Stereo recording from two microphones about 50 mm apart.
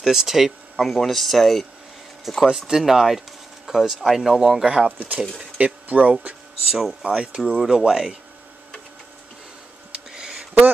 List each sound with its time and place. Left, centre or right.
0.0 s speech: centre
2.4 s speech: centre
4.8 s speech: right
6.7 s speech: centre
9.9 s a sound: centre